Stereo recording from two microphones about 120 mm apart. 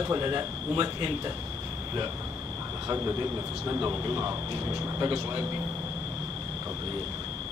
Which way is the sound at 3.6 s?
20° right (ahead or behind).